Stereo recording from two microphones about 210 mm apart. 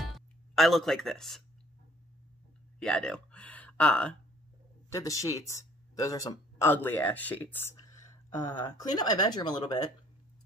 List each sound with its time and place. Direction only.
0.1 s music: centre (ahead or behind)
2.8 s speech: 5° left (ahead or behind); by 9.8 s 20° left (ahead or behind)